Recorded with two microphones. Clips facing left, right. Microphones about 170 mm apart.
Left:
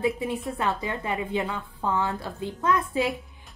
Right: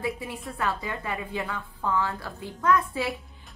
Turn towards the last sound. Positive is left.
turn(degrees=20)  # may be behind; listen again after turning